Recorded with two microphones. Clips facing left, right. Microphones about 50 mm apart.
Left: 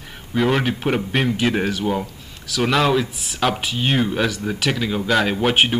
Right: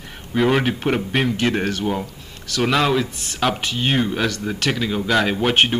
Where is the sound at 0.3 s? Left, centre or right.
Centre.